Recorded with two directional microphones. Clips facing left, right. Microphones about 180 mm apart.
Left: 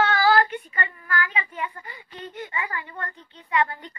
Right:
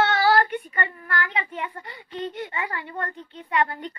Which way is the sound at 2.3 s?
55° right (ahead or behind).